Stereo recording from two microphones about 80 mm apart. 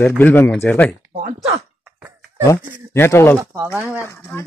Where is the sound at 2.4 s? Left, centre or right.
Left.